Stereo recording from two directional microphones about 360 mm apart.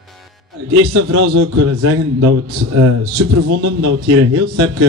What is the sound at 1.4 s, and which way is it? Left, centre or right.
Speech, right.